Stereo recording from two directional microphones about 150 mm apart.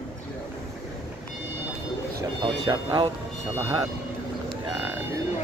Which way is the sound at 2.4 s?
30° right (ahead or behind).